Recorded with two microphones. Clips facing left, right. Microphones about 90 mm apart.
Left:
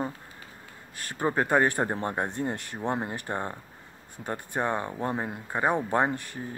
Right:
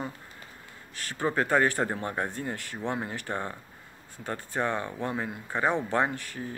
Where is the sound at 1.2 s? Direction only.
20° left (ahead or behind).